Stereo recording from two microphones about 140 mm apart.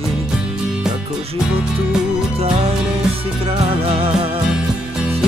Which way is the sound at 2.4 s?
45° right (ahead or behind).